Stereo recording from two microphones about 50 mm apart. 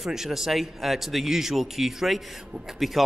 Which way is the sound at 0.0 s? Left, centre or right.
Centre.